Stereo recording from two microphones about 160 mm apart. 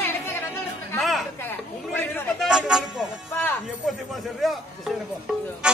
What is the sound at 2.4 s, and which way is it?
Speech, 5° right (ahead or behind).